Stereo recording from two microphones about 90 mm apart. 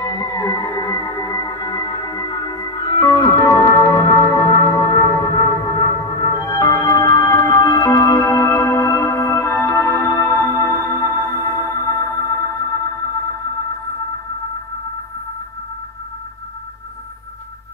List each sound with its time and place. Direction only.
0.0 s music: 35° left (ahead or behind)